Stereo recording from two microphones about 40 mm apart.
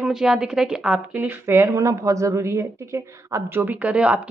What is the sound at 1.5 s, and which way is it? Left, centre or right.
Speech, right.